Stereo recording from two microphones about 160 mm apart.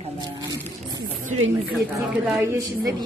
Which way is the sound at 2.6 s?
25° right (ahead or behind).